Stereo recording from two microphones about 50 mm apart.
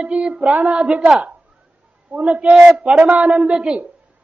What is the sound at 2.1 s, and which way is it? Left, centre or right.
A man's voice, right.